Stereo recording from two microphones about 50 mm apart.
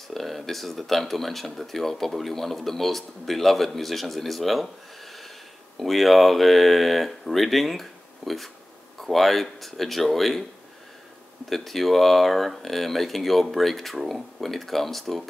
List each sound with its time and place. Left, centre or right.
0.1 s speech: centre
11.4 s speech: centre